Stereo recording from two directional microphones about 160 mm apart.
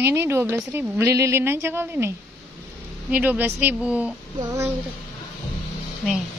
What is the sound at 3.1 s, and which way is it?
Speech, 10° right (ahead or behind).